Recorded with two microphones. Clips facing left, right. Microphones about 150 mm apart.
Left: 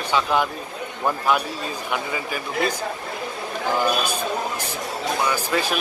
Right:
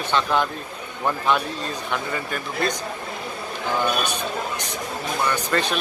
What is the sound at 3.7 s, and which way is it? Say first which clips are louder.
Speech: left 1 dB; 10° left (ahead or behind).